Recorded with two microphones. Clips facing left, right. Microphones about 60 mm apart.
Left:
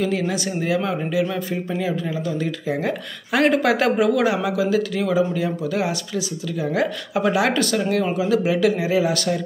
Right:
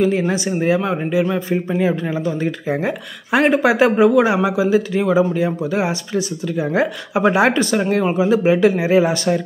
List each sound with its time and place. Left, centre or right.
0.1 s speech: right